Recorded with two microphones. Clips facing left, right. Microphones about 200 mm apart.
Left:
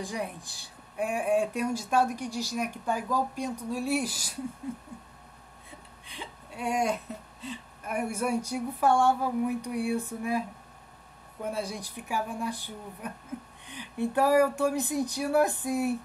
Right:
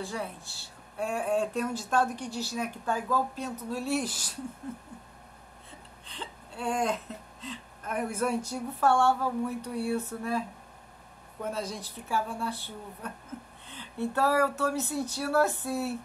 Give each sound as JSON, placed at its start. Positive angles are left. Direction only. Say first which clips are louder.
{"t": 0.0, "sound": "speech", "louder": "left 1 dB", "side_deg": 15}
{"t": 6.0, "sound": "speech", "louder": "even", "side_deg": 10}
{"t": 11.4, "sound": "speech", "louder": "left 1 dB", "side_deg": 10}